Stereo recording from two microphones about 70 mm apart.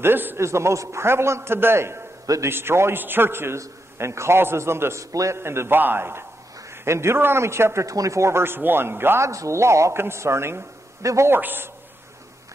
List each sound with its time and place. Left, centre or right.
0.0 s a man's voice: right
0.4 s a man's voice: right
2.2 s a man's voice: right
2.5 s a man's voice: right
9.3 s a woman's voice: right
11.2 s a man's voice: right